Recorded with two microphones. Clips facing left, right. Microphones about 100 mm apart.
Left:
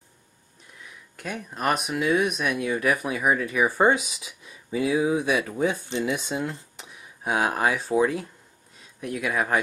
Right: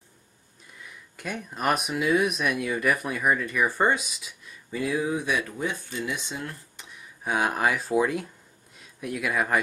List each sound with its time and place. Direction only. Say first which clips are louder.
0.8 s speech: even; centre (ahead or behind)
5.6 s speech: left 6 dB; 20° left (ahead or behind)
7.2 s speech: left 1 dB; centre (ahead or behind)